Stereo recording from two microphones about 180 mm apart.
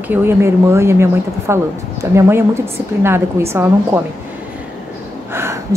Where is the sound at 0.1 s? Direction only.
15° right (ahead or behind).